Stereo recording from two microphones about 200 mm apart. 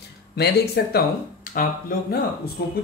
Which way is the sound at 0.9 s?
45° left (ahead or behind).